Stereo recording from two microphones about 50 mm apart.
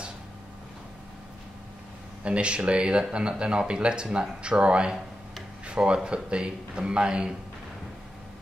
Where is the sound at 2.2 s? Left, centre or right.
Right.